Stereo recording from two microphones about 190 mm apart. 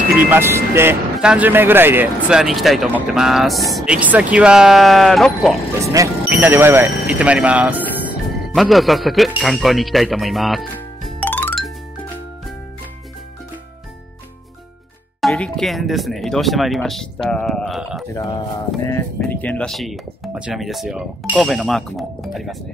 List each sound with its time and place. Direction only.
0.3 s speech: 10° right (ahead or behind)
11.1 s music: 10° left (ahead or behind)
15.1 s speech: centre (ahead or behind)
18.1 s speech: 25° left (ahead or behind)
18.9 s speech: 10° left (ahead or behind)